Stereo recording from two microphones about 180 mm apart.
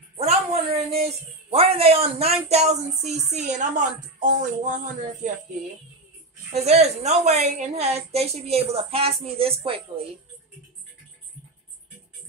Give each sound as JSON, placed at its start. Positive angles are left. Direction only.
{"t": 0.2, "sound": "speech", "side_deg": -35}
{"t": 4.2, "sound": "a sound", "side_deg": -45}
{"t": 6.5, "sound": "a woman's voice", "side_deg": -35}